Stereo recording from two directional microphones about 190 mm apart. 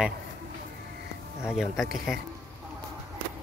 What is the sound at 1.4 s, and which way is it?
Speech, 5° right (ahead or behind).